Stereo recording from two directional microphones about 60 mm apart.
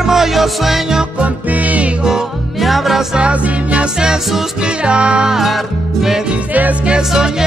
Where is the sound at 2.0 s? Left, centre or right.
Centre.